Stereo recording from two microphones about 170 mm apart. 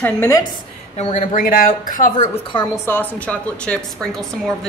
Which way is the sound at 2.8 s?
10° left (ahead or behind).